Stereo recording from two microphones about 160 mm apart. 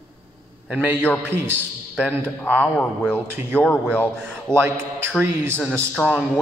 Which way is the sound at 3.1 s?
15° right (ahead or behind).